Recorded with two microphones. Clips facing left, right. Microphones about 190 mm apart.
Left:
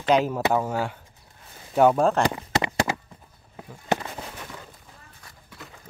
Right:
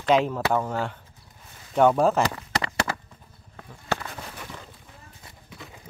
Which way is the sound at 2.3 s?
20° left (ahead or behind).